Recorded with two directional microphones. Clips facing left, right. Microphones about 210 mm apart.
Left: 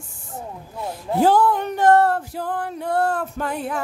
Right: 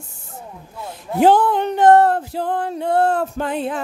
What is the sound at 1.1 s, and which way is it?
Female singing, 20° right (ahead or behind).